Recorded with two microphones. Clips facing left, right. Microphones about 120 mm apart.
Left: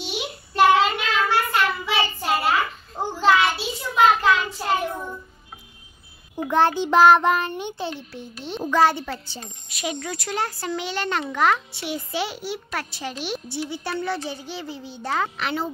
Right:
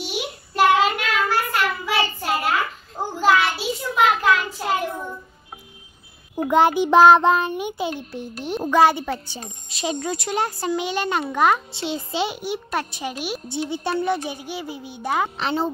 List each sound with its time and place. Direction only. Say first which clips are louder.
0.6 s child singing: even; 5° right (ahead or behind)
6.5 s a child's voice: right 3 dB; 15° right (ahead or behind)
9.7 s a sound: right 3 dB; 25° right (ahead or behind)
9.9 s a child's voice: right 4 dB; 20° right (ahead or behind)
15.3 s a child's voice: right 3 dB; 30° right (ahead or behind)